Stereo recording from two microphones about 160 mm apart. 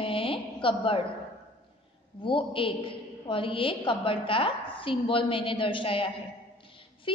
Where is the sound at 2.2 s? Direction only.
35° left (ahead or behind).